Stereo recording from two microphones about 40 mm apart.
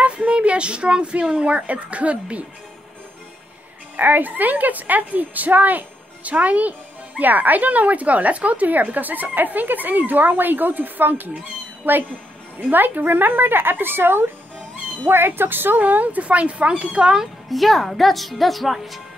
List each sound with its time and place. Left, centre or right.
0.0 s speech: right
3.9 s a woman's voice: right
12.7 s a woman's voice: right
17.5 s a woman's voice: centre